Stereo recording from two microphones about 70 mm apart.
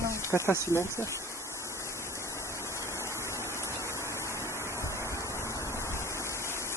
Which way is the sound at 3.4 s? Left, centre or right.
Left.